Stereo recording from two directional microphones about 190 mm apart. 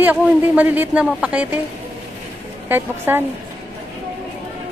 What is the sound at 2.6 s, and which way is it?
Speech, 10° right (ahead or behind).